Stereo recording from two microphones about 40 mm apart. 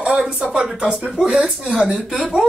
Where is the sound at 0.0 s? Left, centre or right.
Right.